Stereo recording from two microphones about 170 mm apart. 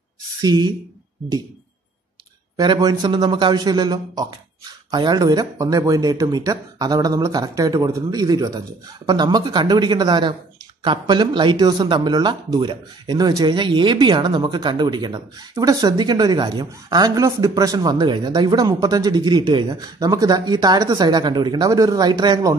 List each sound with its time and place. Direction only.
0.4 s speech: 25° right (ahead or behind)
2.5 s speech: 25° right (ahead or behind)